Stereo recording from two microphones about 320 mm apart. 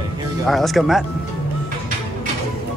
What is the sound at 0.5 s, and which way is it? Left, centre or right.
Speech, centre.